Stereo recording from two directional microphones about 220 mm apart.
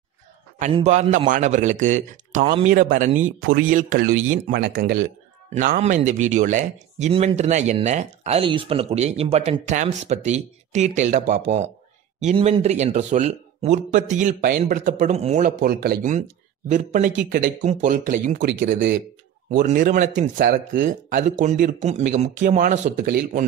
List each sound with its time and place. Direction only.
0.7 s speech: 30° right (ahead or behind); by 5.0 s 45° right (ahead or behind)
5.5 s speech: 35° right (ahead or behind); by 18.9 s 55° right (ahead or behind)
19.5 s speech: 35° right (ahead or behind)